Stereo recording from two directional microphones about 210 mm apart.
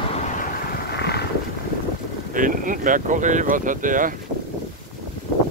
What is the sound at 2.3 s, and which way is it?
Speech, 40° right (ahead or behind).